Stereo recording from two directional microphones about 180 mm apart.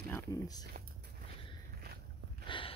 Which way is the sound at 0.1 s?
20° left (ahead or behind).